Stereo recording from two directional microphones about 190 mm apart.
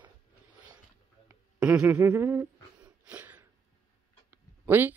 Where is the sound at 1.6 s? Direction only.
5° right (ahead or behind).